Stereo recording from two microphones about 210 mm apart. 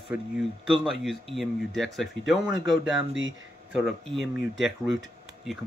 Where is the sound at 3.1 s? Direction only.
65° right (ahead or behind).